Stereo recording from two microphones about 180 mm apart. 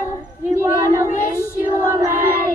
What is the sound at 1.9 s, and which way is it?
Child singing, 20° right (ahead or behind).